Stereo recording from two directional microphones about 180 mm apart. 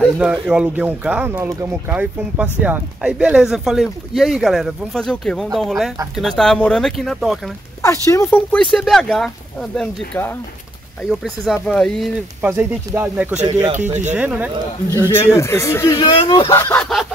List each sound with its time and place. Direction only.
0.0 s speech: 5° right (ahead or behind)
7.8 s speech: 15° left (ahead or behind)
12.4 s speech: 10° right (ahead or behind)
13.7 s speech: 40° right (ahead or behind)
14.1 s speech: 10° right (ahead or behind)
15.0 s speech: 15° left (ahead or behind)